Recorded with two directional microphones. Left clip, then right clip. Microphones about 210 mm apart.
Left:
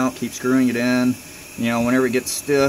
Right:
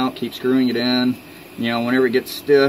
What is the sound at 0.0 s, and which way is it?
Speech, 20° left (ahead or behind).